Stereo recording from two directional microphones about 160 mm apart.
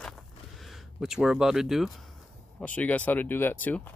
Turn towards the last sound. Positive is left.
turn(degrees=10)  # may be behind; listen again after turning